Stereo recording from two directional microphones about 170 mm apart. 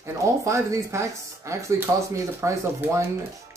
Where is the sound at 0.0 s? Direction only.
15° right (ahead or behind).